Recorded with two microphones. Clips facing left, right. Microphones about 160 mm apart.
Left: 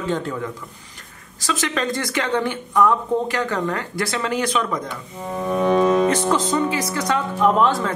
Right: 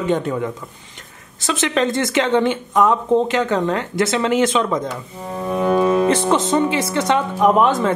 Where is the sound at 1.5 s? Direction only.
25° right (ahead or behind).